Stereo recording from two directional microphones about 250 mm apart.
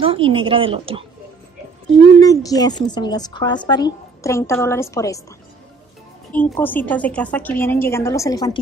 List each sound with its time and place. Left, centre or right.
0.0 s speech: right
2.1 s a woman's voice: centre
6.3 s a woman's voice: centre